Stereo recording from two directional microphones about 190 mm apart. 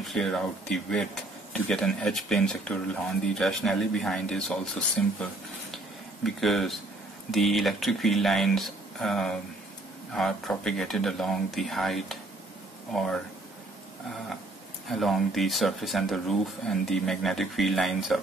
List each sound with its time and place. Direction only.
0.0 s speech: centre (ahead or behind)
14.9 s speech: centre (ahead or behind)